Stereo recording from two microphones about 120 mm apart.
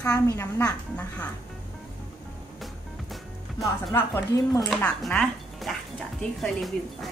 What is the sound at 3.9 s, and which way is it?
Speech, 20° left (ahead or behind).